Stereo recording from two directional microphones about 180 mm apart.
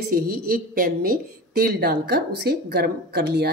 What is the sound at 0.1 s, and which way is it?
A woman's voice, 50° right (ahead or behind).